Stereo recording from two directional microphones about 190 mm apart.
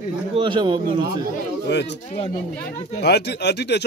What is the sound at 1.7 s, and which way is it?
Speech, 65° left (ahead or behind).